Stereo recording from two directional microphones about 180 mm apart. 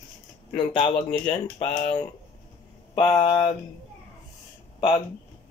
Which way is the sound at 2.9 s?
25° left (ahead or behind).